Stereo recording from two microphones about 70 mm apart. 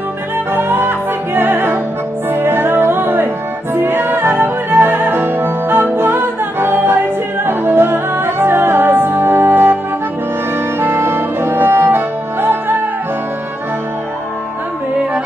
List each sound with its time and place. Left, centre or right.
0.6 s music: right
10.8 s music: right